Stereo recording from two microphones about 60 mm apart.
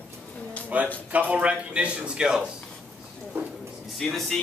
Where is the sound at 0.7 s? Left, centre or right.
Right.